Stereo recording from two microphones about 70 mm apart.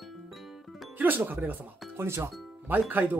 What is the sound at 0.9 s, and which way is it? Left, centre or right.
Speech, right.